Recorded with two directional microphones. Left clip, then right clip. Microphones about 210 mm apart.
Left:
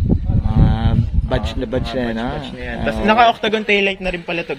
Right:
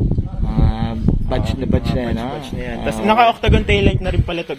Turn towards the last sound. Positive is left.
turn(degrees=-5)  # may be behind; listen again after turning